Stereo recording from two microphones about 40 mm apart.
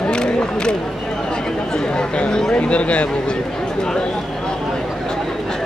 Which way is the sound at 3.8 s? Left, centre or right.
Left.